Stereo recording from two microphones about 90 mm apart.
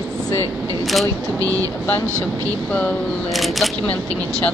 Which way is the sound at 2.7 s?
15° left (ahead or behind).